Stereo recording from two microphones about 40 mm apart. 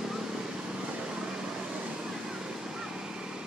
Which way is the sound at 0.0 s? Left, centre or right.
Centre.